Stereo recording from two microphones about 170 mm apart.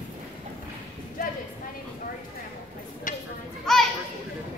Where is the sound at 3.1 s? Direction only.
50° left (ahead or behind).